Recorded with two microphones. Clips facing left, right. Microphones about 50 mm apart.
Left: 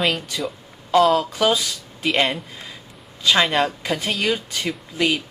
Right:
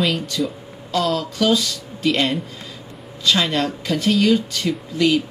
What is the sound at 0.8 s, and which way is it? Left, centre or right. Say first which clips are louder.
Speech: left 5 dB; centre.